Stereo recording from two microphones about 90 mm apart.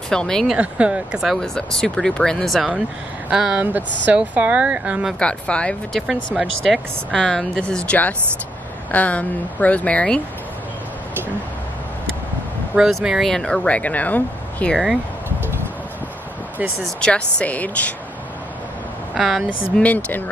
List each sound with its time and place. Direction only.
0.1 s speech: 5° left (ahead or behind)
0.6 s speech: 15° right (ahead or behind)
1.2 s speech: 5° left (ahead or behind); by 5.1 s 15° right (ahead or behind)
5.2 s speech: 10° left (ahead or behind)
12.7 s speech: 5° right (ahead or behind)
13.3 s speech: 10° left (ahead or behind)
17.0 s speech: 10° left (ahead or behind)
19.1 s speech: centre (ahead or behind)
19.8 s speech: 20° left (ahead or behind)